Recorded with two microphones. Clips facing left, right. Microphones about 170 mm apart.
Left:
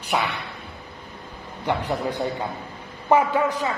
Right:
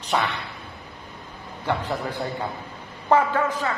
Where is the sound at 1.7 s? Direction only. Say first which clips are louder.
Left 2 dB; 15° left (ahead or behind).